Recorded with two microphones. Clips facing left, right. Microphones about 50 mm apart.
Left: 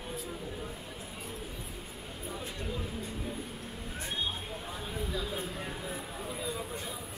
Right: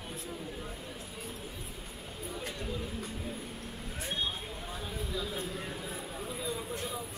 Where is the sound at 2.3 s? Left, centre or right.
Centre.